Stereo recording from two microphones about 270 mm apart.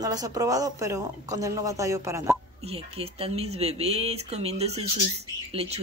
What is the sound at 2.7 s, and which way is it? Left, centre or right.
Speech, right.